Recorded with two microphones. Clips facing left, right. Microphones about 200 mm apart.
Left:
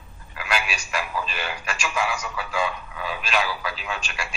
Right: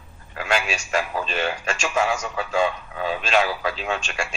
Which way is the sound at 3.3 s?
45° right (ahead or behind).